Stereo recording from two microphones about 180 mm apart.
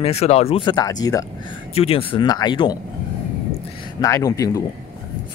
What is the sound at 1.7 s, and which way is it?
Speech, 30° left (ahead or behind).